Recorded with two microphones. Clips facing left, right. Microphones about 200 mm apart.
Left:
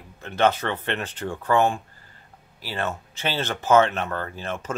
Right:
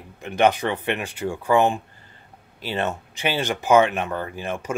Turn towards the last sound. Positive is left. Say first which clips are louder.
# right 2 dB
turn(degrees=-15)  # may be behind; listen again after turning